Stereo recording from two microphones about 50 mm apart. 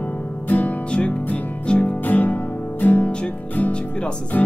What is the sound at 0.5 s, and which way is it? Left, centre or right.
Music, left.